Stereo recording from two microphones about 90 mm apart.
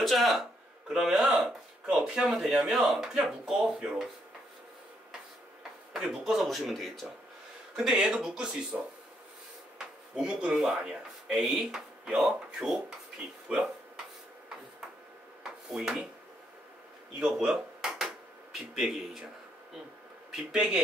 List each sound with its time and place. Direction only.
0.0 s speech: centre (ahead or behind)
5.9 s speech: 5° right (ahead or behind)
9.8 s speech: 10° right (ahead or behind)
15.7 s speech: 5° right (ahead or behind)
17.2 s drawer open or close: 10° right (ahead or behind)
20.2 s speech: 10° right (ahead or behind)